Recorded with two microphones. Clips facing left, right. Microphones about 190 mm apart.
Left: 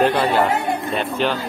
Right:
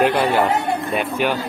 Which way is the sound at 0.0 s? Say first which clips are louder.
Even; 10° right (ahead or behind).